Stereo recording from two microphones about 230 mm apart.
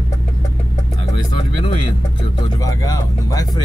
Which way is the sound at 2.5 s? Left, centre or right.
Centre.